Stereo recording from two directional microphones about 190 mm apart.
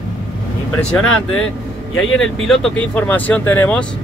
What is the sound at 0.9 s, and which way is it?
Speech, 5° left (ahead or behind).